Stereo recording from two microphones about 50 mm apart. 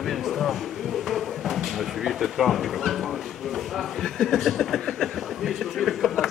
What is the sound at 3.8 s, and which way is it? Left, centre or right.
Speech, centre.